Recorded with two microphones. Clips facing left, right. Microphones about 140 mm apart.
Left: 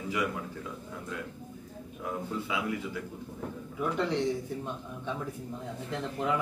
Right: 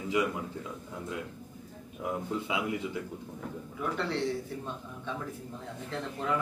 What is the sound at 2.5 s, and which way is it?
Speech, 20° right (ahead or behind).